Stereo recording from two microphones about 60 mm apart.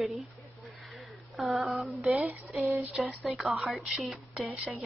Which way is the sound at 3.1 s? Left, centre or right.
Centre.